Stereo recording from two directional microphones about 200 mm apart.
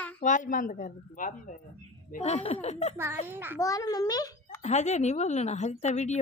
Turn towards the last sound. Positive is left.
turn(degrees=35)  # may be behind; listen again after turning